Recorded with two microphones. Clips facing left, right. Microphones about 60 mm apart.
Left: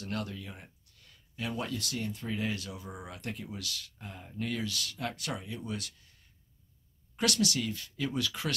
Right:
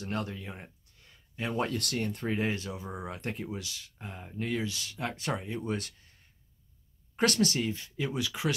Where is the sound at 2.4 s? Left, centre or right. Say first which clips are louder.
Right 3 dB; right.